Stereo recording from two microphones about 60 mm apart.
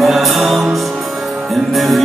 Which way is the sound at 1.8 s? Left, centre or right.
Centre.